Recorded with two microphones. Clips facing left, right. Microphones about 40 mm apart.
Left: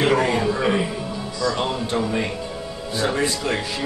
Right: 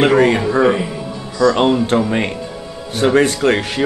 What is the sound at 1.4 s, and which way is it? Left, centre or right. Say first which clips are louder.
Speech: right 11 dB; right.